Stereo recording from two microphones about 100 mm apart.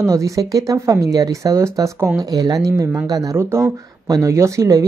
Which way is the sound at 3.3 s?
30° right (ahead or behind).